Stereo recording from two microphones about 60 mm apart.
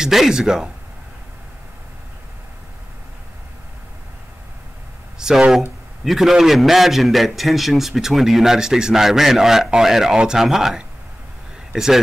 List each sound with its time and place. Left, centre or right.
0.0 s speech: centre
5.2 s a sound: centre
6.0 s a man's voice: centre